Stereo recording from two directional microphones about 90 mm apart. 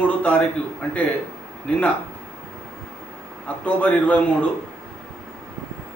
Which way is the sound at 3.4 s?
15° left (ahead or behind).